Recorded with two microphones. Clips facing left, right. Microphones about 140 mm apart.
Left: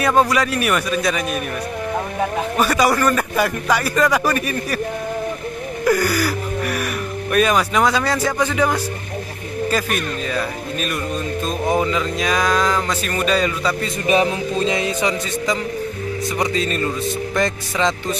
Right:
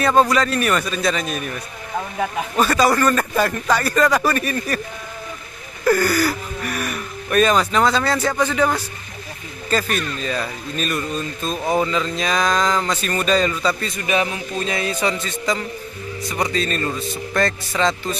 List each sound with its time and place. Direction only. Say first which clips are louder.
0.0 s speech: even; 10° left (ahead or behind)
2.5 s speech: right 1 dB; 10° left (ahead or behind)
5.9 s speech: right 1 dB; 10° left (ahead or behind)
14.0 s music: left 5 dB; 35° left (ahead or behind); by 15.6 s 15° left (ahead or behind)
16.4 s speech: even; 15° left (ahead or behind)